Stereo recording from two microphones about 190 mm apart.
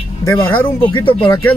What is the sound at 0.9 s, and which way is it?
Speech, 25° left (ahead or behind).